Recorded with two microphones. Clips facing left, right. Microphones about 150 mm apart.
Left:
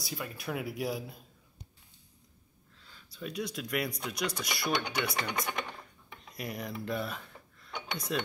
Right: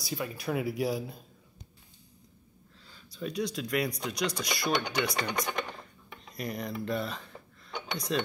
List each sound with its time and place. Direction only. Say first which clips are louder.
0.0 s chopping: right 4 dB; centre (ahead or behind)
2.9 s speech: right 4 dB; centre (ahead or behind)
4.0 s chopping: right 3 dB; 5° left (ahead or behind)
6.3 s speech: right 3 dB; 5° left (ahead or behind)